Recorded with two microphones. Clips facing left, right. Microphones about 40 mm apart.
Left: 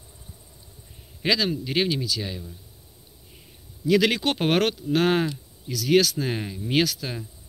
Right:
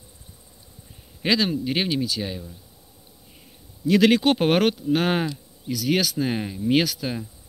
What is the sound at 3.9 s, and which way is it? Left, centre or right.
Speech, centre.